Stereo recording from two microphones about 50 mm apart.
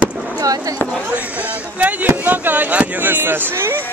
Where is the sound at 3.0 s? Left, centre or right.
Right.